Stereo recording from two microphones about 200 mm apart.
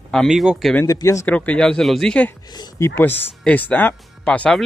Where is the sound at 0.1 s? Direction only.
Centre (ahead or behind).